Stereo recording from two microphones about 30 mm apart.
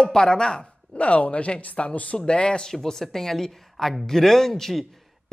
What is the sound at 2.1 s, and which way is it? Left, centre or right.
Speech, left.